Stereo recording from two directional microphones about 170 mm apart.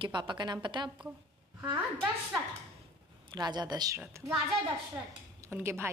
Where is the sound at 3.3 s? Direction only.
25° right (ahead or behind).